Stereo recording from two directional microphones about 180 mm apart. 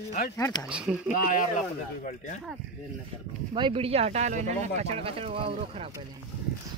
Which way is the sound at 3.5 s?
30° right (ahead or behind).